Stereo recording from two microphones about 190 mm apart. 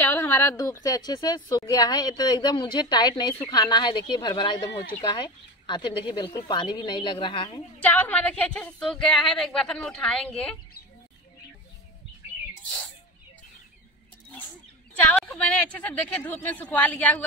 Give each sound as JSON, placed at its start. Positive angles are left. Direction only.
{"t": 0.0, "sound": "a sound", "side_deg": 10}
{"t": 0.8, "sound": "speech", "side_deg": 20}
{"t": 7.8, "sound": "speech", "side_deg": 10}
{"t": 15.1, "sound": "speech", "side_deg": 5}